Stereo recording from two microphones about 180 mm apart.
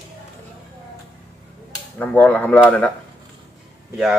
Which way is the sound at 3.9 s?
5° right (ahead or behind).